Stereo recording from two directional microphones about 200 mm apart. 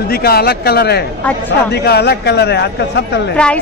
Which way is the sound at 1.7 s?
55° left (ahead or behind).